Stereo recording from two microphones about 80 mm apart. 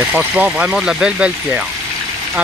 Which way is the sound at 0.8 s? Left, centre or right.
Centre.